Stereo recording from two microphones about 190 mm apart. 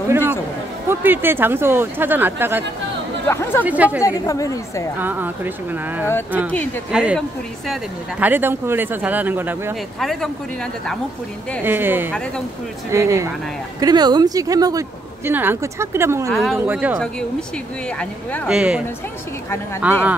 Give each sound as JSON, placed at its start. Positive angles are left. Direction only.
{"t": 0.8, "sound": "speech", "side_deg": -10}
{"t": 3.3, "sound": "speech", "side_deg": 15}
{"t": 3.6, "sound": "speech", "side_deg": -10}
{"t": 4.3, "sound": "speech", "side_deg": 15}
{"t": 4.9, "sound": "speech", "side_deg": -10}
{"t": 8.2, "sound": "speech", "side_deg": -10}
{"t": 9.9, "sound": "speech", "side_deg": 0}
{"t": 11.6, "sound": "speech", "side_deg": -10}
{"t": 16.3, "sound": "speech", "side_deg": 0}
{"t": 17.9, "sound": "speech", "side_deg": 10}
{"t": 18.5, "sound": "speech", "side_deg": -5}
{"t": 19.8, "sound": "speech", "side_deg": -10}